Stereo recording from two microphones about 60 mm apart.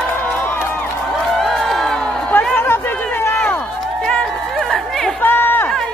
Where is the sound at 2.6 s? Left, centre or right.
Left.